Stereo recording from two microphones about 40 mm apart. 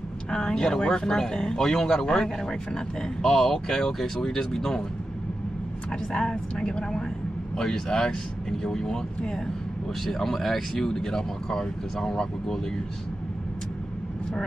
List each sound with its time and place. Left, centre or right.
0.3 s speech: centre
6.1 s a woman's voice: left
10.0 s speech: centre